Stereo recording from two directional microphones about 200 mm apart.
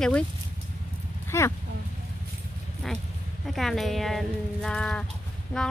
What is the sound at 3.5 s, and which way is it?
Speech, centre (ahead or behind).